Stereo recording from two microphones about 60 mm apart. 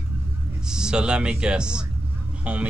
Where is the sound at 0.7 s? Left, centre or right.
Centre.